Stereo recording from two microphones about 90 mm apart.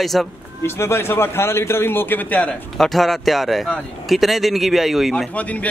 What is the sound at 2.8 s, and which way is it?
Speech, centre (ahead or behind).